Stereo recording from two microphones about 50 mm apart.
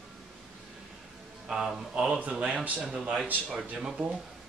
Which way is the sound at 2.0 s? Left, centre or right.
Right.